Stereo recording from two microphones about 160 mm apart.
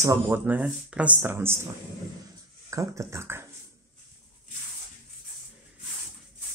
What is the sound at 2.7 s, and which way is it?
Speech, 20° right (ahead or behind).